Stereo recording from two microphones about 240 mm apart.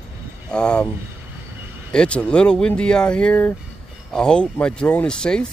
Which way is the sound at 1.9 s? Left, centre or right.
Centre.